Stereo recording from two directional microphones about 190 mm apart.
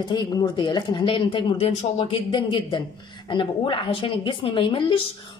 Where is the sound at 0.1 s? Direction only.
20° left (ahead or behind).